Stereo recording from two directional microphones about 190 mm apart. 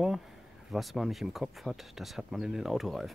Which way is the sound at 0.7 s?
Centre (ahead or behind).